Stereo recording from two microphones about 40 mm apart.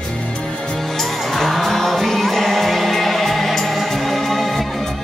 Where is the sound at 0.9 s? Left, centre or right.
Centre.